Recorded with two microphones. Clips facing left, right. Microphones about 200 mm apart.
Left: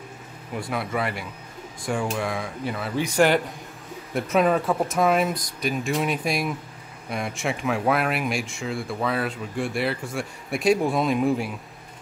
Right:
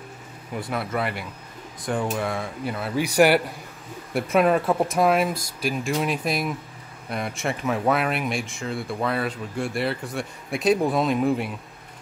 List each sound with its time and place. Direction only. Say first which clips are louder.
0.6 s a man's voice: even; centre (ahead or behind)